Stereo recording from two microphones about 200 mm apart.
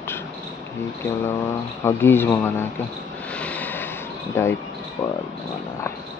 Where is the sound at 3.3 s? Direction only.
5° left (ahead or behind).